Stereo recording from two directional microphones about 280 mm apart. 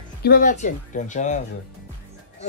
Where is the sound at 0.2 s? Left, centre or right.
Left.